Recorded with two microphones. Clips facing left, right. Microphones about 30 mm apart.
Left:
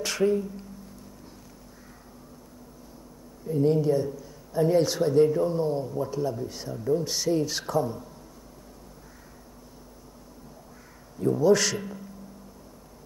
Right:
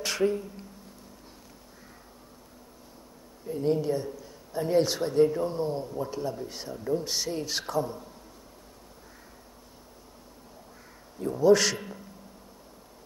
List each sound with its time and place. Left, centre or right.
0.0 s a sound: centre
3.5 s speech: right
3.8 s speech: right
11.3 s a man's voice: centre